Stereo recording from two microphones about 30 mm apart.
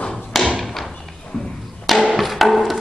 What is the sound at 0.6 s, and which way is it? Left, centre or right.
Thump, centre.